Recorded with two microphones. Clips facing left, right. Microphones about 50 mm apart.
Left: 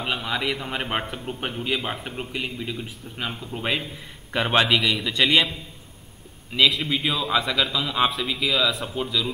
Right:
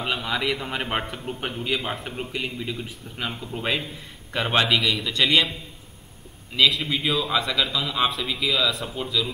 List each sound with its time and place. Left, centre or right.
0.0 s a man's voice: centre
6.5 s a man's voice: centre